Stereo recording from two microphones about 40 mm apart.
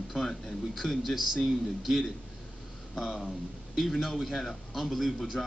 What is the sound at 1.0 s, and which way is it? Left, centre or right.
A man's voice, centre.